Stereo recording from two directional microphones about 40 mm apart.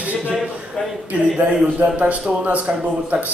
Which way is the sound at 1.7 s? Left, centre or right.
Right.